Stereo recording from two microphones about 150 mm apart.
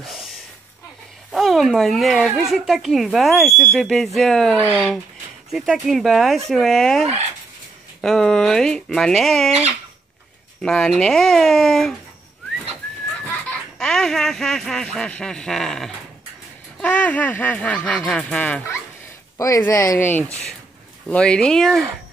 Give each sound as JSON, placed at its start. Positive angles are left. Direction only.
{"t": 0.0, "sound": "a sound", "side_deg": 0}
{"t": 1.3, "sound": "speech", "side_deg": 0}
{"t": 4.6, "sound": "speech", "side_deg": -10}
{"t": 10.6, "sound": "speech", "side_deg": 5}
{"t": 13.5, "sound": "speech", "side_deg": 5}
{"t": 19.3, "sound": "speech", "side_deg": 20}